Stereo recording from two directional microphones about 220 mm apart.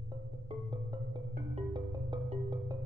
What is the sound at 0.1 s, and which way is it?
Music, 20° right (ahead or behind).